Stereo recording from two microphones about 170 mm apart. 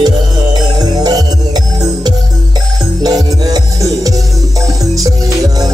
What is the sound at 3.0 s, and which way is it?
Music, 20° right (ahead or behind).